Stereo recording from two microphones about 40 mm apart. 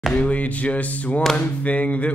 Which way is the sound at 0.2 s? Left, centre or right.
Left.